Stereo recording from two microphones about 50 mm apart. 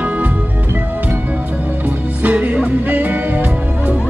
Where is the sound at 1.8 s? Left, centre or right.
Right.